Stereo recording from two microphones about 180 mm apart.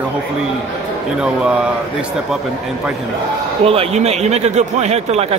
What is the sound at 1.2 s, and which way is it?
Speech, 5° right (ahead or behind).